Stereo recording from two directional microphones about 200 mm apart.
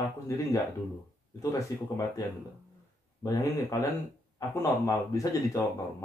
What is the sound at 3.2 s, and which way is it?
Speech, 15° left (ahead or behind).